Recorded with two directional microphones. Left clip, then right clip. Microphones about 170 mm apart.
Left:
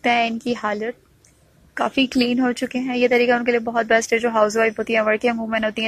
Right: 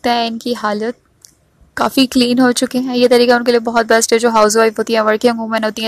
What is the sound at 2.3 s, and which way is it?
Speech, 35° right (ahead or behind).